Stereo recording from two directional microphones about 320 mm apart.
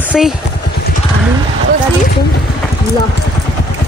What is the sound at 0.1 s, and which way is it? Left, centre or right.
Speech, centre.